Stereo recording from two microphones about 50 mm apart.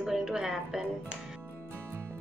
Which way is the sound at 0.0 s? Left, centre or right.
Centre.